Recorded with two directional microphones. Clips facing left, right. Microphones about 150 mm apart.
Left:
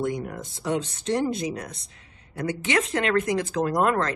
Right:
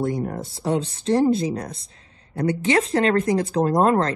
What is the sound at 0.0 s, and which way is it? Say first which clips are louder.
Speech: right 4 dB; 35° right (ahead or behind).